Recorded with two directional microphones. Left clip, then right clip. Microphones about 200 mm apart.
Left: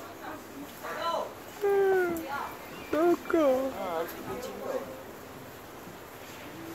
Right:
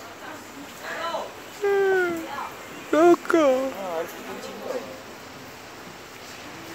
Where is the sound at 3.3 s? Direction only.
15° right (ahead or behind).